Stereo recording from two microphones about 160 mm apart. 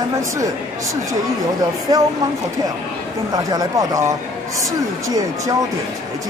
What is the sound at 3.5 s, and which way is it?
Speech, 20° right (ahead or behind).